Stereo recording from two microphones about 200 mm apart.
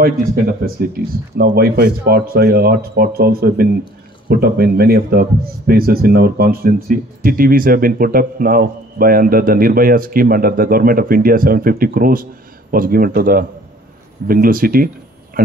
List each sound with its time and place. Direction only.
0.6 s a man's voice: 50° right (ahead or behind)